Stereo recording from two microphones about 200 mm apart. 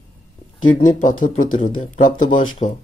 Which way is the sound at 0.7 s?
40° left (ahead or behind).